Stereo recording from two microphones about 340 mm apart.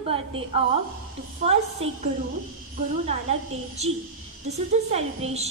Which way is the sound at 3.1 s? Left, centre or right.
Centre.